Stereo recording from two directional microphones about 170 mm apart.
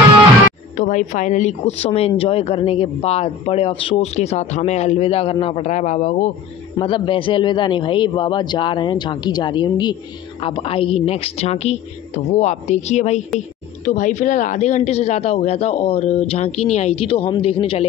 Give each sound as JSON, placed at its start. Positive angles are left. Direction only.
{"t": 0.7, "sound": "a woman's voice", "side_deg": 45}
{"t": 6.8, "sound": "a man's voice", "side_deg": 30}